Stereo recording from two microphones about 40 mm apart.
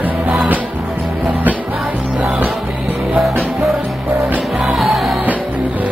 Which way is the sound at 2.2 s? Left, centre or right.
Right.